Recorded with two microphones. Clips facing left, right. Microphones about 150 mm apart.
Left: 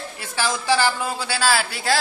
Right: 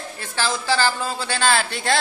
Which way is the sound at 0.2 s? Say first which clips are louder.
Even; 15° left (ahead or behind).